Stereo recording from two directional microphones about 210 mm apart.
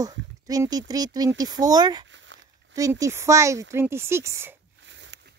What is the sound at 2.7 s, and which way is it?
Speech, 15° right (ahead or behind).